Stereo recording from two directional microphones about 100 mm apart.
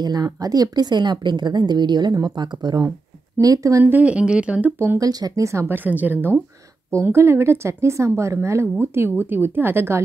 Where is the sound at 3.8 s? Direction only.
15° right (ahead or behind).